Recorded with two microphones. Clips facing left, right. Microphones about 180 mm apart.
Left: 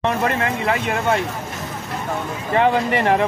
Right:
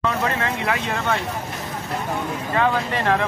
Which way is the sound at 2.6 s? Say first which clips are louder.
Left 5 dB; 15° left (ahead or behind).